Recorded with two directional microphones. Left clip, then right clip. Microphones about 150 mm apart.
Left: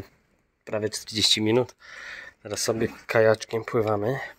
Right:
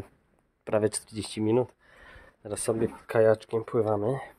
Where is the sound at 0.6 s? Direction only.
25° right (ahead or behind).